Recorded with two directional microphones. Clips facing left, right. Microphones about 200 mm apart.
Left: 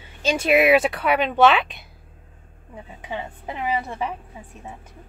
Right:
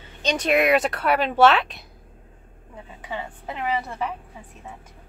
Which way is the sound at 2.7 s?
15° left (ahead or behind).